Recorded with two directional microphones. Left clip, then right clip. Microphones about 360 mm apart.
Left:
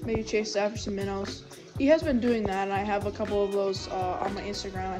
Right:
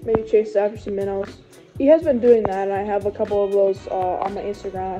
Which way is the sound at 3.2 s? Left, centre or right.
Centre.